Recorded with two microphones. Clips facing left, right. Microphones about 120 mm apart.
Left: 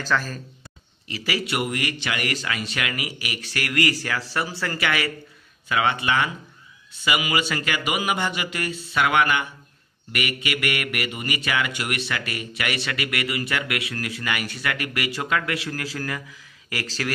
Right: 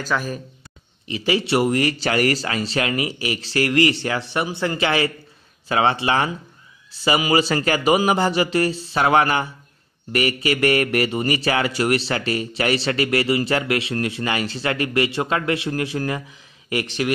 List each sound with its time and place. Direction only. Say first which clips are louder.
0.1 s speech: right 1 dB; 15° right (ahead or behind)